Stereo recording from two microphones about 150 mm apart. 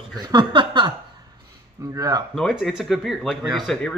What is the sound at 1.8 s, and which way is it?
Speech, 20° right (ahead or behind).